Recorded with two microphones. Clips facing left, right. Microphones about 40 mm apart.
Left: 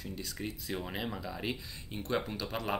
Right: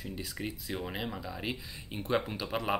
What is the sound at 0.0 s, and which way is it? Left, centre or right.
Speech, centre.